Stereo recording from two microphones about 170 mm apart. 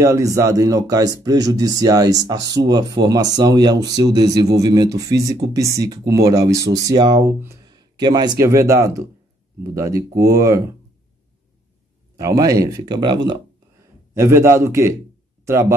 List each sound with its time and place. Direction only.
0.0 s speech: 20° right (ahead or behind)
12.2 s speech: 20° right (ahead or behind)
14.1 s speech: 15° right (ahead or behind)